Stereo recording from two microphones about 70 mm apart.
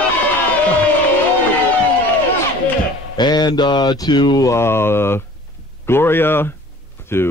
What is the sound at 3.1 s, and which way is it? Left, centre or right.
Speech, left.